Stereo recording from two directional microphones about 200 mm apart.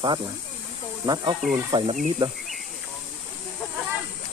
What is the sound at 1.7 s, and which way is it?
Speech, 25° right (ahead or behind).